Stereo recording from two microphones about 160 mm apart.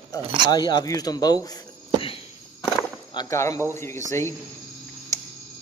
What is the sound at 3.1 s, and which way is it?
A man's voice, 20° left (ahead or behind).